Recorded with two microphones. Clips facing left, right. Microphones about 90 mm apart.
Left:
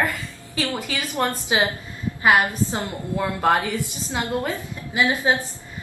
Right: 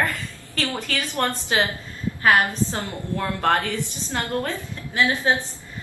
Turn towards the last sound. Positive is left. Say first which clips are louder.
# left 1 dB
turn(degrees=15)  # may be behind; listen again after turning